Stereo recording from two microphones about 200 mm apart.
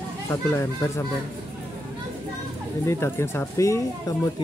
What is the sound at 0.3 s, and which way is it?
Speech, 15° left (ahead or behind).